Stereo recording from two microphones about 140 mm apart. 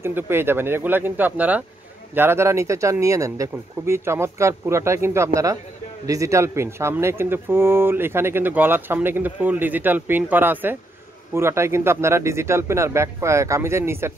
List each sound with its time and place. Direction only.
0.0 s speech: 15° right (ahead or behind)